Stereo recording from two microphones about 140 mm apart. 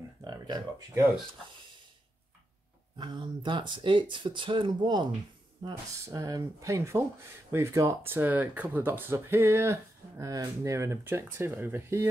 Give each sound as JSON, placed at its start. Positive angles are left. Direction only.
{"t": 0.2, "sound": "speech", "side_deg": -30}
{"t": 3.0, "sound": "speech", "side_deg": -35}
{"t": 6.0, "sound": "speech", "side_deg": -25}